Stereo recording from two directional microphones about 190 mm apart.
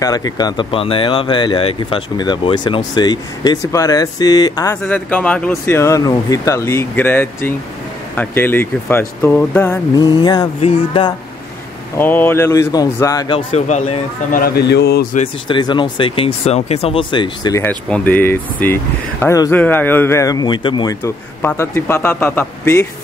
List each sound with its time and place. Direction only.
0.0 s a man's voice: 20° left (ahead or behind)
9.9 s speech: 20° left (ahead or behind)
12.0 s speech: 10° left (ahead or behind); by 14.4 s 40° left (ahead or behind)
14.4 s speech: 60° left (ahead or behind)
15.4 s a man's voice: 25° left (ahead or behind)
21.0 s a man's voice: 15° left (ahead or behind)